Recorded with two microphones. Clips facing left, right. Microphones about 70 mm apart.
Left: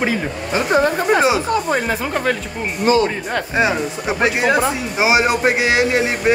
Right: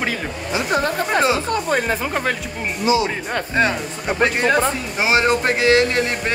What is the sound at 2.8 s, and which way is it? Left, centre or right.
Speech, left.